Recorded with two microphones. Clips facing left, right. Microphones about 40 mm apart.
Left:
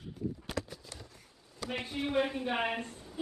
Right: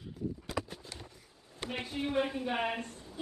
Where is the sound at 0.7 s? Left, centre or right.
Right.